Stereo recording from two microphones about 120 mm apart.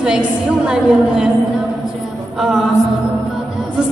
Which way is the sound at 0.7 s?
10° right (ahead or behind).